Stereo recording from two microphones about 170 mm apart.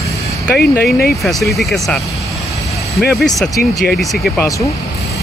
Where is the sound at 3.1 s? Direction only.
Centre (ahead or behind).